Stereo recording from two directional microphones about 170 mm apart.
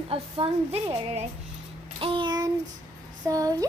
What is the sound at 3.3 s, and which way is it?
Speech, 20° right (ahead or behind).